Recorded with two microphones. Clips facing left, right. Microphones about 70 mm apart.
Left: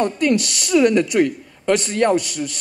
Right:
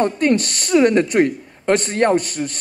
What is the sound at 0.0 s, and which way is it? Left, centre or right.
Speech, right.